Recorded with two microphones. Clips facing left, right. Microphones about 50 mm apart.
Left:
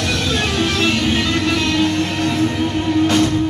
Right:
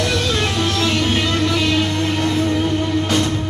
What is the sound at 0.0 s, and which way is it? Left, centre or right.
Music, left.